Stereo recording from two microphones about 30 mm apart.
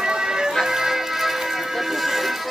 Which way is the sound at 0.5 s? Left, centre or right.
Centre.